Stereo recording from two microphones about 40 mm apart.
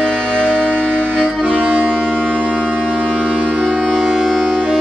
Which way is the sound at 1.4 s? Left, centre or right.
Right.